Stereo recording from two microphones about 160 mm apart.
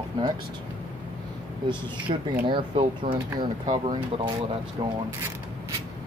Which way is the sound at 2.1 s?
40° right (ahead or behind).